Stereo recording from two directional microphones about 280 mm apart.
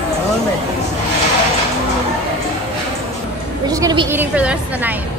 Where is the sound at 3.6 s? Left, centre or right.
Centre.